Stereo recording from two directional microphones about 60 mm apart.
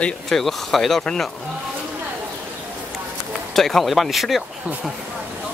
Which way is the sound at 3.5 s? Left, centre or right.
Centre.